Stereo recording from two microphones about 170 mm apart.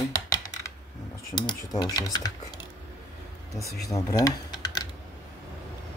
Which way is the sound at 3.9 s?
20° left (ahead or behind).